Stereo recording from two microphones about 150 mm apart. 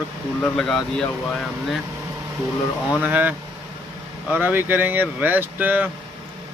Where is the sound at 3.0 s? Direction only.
10° right (ahead or behind).